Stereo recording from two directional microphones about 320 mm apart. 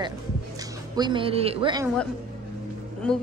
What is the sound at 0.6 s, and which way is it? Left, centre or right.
Speech, centre.